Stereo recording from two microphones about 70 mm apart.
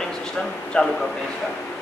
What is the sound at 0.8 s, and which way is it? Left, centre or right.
Speech, centre.